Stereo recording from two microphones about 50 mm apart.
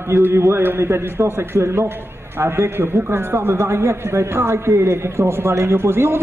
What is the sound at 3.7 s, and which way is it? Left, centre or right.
A man's voice, right.